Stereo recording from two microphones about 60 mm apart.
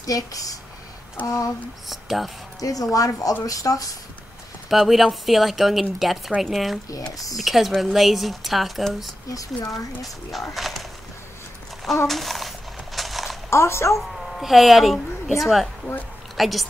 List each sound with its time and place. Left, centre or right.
0.0 s speech: left
1.2 s speech: left
1.9 s speech: centre
2.6 s speech: left
4.6 s speech: centre
6.9 s speech: left
7.3 s speech: centre
9.3 s speech: left
10.5 s speech: centre
12.1 s a sound: centre
13.5 s a woman's voice: left
13.9 s a woman's voice: centre